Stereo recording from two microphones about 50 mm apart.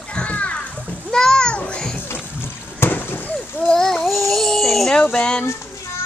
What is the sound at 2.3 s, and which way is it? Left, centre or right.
Boat, left.